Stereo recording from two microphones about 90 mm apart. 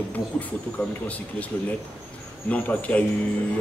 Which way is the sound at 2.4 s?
15° left (ahead or behind).